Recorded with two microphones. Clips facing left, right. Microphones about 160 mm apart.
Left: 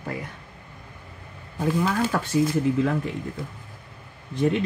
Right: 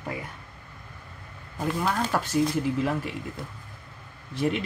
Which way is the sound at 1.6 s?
Centre (ahead or behind).